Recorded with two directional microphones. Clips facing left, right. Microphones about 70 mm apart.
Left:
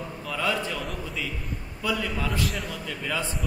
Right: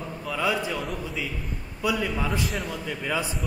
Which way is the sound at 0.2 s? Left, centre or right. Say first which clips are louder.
Right 2 dB; centre.